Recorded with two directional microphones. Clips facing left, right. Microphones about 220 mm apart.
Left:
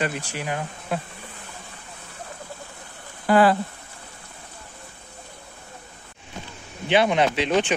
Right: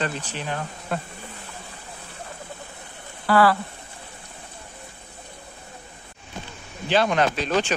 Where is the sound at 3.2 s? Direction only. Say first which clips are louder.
Left 1 dB; 20° left (ahead or behind).